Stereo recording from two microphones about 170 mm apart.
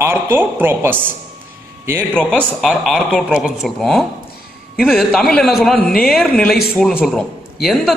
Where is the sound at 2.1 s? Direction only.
5° left (ahead or behind).